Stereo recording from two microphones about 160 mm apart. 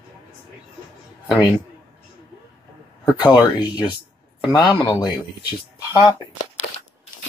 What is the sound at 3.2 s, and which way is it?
Speech, 25° left (ahead or behind).